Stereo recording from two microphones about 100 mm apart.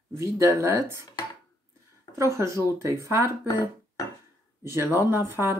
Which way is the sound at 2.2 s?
30° right (ahead or behind).